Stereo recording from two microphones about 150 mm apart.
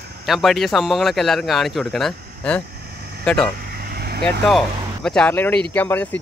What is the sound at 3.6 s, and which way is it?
Vehicle, 90° right.